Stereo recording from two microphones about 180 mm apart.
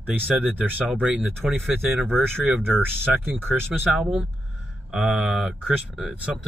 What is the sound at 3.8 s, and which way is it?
Speech, centre (ahead or behind).